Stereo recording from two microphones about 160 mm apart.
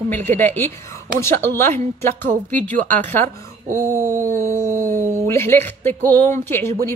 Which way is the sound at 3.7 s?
20° right (ahead or behind).